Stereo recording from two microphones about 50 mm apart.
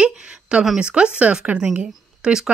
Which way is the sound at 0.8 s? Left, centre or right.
Right.